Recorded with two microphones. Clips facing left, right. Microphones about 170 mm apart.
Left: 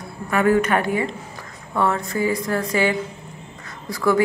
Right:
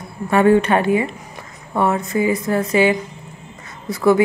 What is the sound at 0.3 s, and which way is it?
A woman's voice, 30° right (ahead or behind).